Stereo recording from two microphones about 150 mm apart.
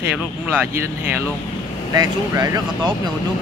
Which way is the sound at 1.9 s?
25° right (ahead or behind).